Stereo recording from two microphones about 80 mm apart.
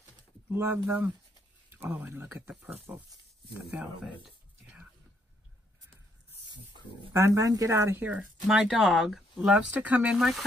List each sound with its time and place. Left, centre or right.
0.5 s speech: right
1.7 s a sound: right
2.0 s speech: right
7.1 s speech: right
8.5 s speech: centre
10.1 s speech: centre